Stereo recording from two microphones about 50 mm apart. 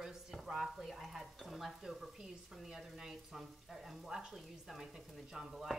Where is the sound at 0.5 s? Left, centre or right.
Centre.